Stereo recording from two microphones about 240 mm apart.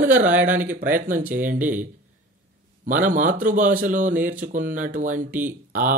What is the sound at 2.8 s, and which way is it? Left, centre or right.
A man's voice, right.